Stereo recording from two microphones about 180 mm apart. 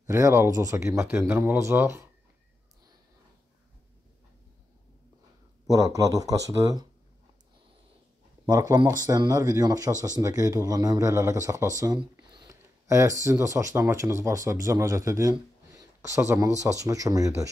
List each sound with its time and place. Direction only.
0.0 s speech: 15° right (ahead or behind)
5.7 s speech: 20° right (ahead or behind)
8.5 s speech: 20° right (ahead or behind)